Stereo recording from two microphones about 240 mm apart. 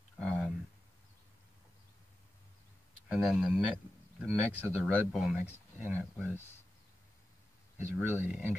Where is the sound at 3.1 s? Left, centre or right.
Centre.